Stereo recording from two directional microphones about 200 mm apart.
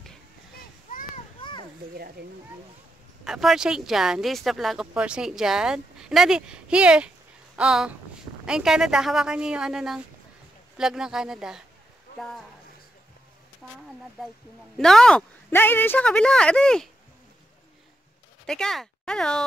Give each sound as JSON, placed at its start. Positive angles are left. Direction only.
{"t": 0.6, "sound": "a sound", "side_deg": 45}
{"t": 2.0, "sound": "speech", "side_deg": -50}
{"t": 3.3, "sound": "speech", "side_deg": 0}
{"t": 14.8, "sound": "speech", "side_deg": 5}
{"t": 18.5, "sound": "speech", "side_deg": 5}